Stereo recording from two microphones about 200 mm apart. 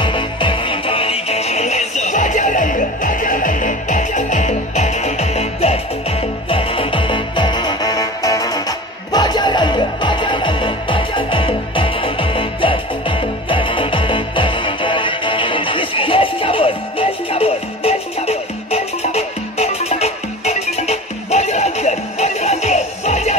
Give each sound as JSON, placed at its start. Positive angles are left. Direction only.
{"t": 0.0, "sound": "music", "side_deg": 25}